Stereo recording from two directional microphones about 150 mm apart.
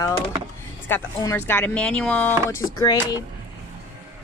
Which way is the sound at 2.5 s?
25° left (ahead or behind).